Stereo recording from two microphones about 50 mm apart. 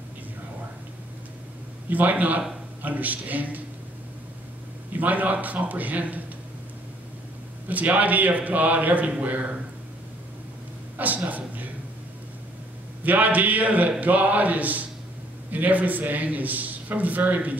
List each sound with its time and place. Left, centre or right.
1.9 s a man's voice: right
4.9 s a man's voice: right
7.6 s a man's voice: right
11.2 s a sound: right
13.0 s a man's voice: right